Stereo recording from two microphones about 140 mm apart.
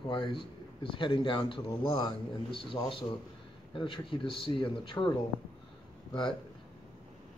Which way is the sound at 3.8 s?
35° left (ahead or behind).